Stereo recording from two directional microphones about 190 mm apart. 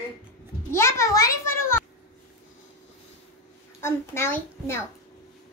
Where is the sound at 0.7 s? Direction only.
15° left (ahead or behind).